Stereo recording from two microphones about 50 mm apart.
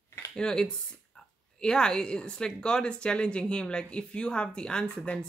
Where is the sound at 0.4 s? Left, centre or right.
Centre.